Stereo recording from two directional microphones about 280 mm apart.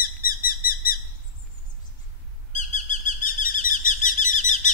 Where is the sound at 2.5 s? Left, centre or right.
Left.